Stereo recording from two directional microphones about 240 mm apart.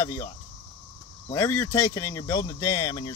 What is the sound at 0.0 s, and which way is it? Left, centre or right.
Speech, centre.